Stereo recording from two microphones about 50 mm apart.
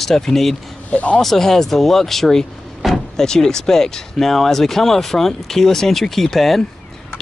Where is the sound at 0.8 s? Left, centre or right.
Left.